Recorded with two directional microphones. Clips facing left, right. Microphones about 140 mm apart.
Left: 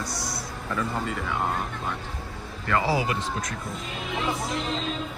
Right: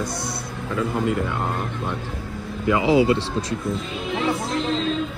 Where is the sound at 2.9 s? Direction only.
25° right (ahead or behind).